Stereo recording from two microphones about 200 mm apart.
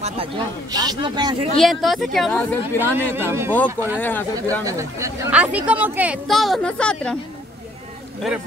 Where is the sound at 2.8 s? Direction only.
10° right (ahead or behind).